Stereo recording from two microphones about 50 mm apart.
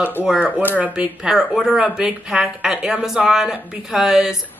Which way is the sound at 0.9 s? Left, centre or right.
Centre.